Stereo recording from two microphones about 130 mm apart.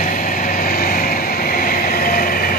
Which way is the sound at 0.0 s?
90° left.